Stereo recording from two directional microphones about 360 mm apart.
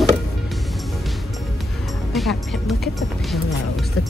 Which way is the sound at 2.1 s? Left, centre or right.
Centre.